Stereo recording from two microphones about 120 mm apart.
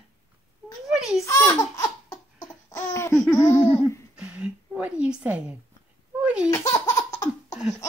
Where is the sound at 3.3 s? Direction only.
10° left (ahead or behind).